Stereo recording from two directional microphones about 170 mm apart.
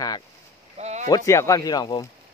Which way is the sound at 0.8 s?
40° right (ahead or behind).